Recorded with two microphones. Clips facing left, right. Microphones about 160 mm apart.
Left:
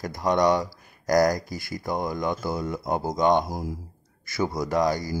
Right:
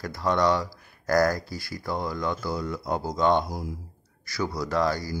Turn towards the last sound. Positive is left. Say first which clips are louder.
# left 2 dB
turn(degrees=20)  # may be behind; listen again after turning